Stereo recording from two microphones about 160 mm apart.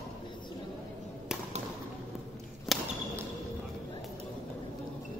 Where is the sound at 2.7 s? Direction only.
Centre (ahead or behind).